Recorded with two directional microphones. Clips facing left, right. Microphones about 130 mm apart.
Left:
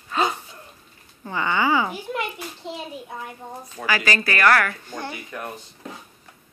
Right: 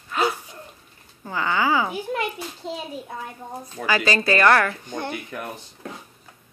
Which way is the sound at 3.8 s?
20° right (ahead or behind).